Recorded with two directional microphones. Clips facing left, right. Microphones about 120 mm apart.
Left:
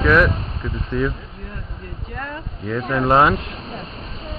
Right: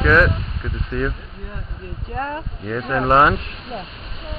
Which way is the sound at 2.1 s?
30° right (ahead or behind).